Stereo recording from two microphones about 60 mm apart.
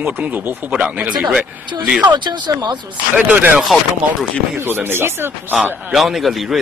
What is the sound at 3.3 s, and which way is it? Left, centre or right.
Speech, right.